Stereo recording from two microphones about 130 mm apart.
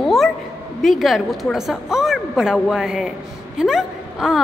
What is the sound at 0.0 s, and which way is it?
Bow-wow, centre (ahead or behind).